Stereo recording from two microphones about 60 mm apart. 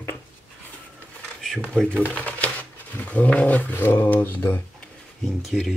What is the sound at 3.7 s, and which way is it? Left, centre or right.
Speech, left.